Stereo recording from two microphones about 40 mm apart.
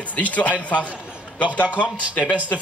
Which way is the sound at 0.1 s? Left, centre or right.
Left.